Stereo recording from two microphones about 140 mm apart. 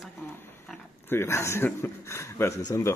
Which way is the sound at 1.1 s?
20° left (ahead or behind).